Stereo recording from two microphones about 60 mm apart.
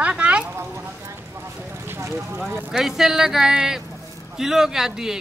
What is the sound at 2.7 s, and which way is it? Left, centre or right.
A man's voice, centre.